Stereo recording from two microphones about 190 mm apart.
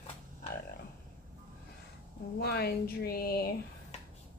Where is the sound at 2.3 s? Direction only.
55° left (ahead or behind).